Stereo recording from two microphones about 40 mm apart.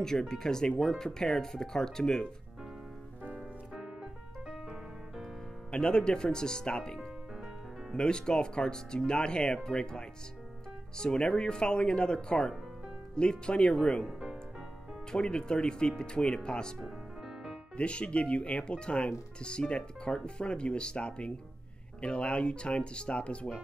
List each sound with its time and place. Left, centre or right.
0.3 s speech: centre
3.7 s piano: centre
5.7 s speech: left
15.0 s speech: centre
16.8 s music: centre
17.7 s speech: left